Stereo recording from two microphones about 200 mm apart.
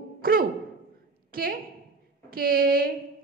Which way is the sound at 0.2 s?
45° right (ahead or behind).